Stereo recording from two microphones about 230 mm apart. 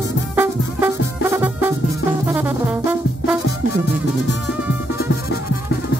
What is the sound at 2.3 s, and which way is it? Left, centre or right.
Brass instrument, centre.